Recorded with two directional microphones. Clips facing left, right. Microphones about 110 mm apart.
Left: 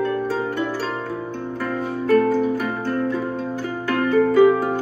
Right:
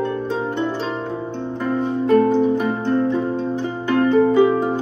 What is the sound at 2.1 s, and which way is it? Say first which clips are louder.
Music: right 2 dB; 25° right (ahead or behind).